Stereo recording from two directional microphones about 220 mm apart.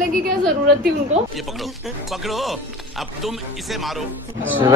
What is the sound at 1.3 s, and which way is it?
Speech, centre (ahead or behind).